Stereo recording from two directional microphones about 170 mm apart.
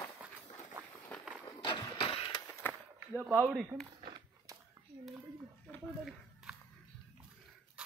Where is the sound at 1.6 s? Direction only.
30° left (ahead or behind).